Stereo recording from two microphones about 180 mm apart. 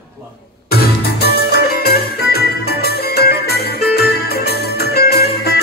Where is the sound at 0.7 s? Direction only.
60° left (ahead or behind).